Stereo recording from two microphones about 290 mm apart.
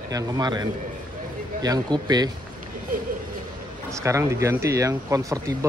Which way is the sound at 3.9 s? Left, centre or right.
Centre.